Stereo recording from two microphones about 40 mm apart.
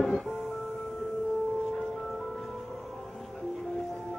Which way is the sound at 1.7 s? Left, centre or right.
Centre.